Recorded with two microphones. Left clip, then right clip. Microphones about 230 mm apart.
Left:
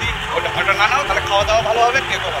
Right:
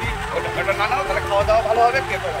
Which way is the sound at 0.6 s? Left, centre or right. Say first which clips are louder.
Left 5 dB; centre.